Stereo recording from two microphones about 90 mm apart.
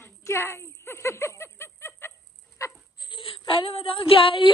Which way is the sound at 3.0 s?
70° left (ahead or behind).